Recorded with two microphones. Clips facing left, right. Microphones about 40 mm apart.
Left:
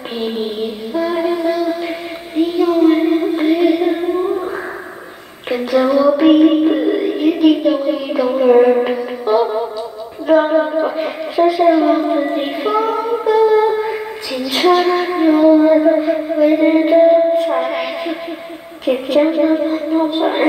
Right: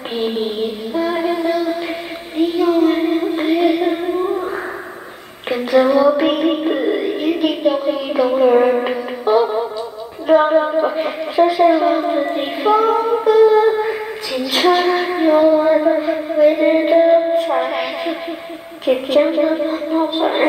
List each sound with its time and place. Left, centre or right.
1.1 s music: centre
2.3 s child singing: centre
5.7 s child singing: centre
9.2 s music: centre
10.2 s a woman's voice: centre
11.9 s a sound: centre
13.6 s female singing: centre
14.8 s a sound: centre
18.9 s a woman's voice: centre
19.4 s a sound: centre